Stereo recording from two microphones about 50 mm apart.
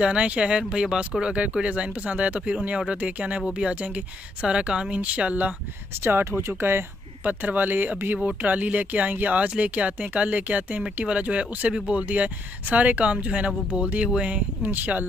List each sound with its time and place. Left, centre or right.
0.0 s speech: right
5.9 s speech: right
7.2 s speech: right
14.3 s speech: right